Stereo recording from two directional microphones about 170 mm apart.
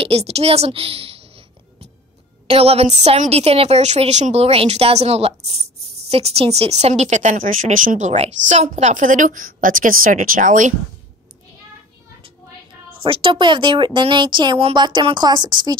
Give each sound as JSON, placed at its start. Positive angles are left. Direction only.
{"t": 0.0, "sound": "a sound", "side_deg": -35}
{"t": 2.4, "sound": "a woman's voice", "side_deg": -35}
{"t": 13.0, "sound": "speech", "side_deg": -30}